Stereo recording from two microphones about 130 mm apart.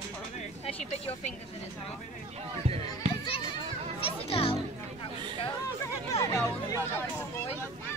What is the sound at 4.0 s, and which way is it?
Music, 45° left (ahead or behind).